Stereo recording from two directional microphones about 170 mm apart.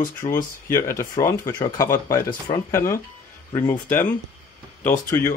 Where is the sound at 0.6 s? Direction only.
15° left (ahead or behind).